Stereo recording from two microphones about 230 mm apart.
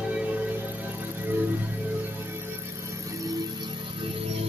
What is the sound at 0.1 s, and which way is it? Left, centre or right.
Music, centre.